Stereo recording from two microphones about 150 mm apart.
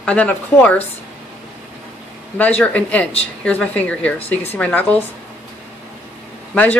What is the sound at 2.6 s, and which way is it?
Speech, 10° left (ahead or behind).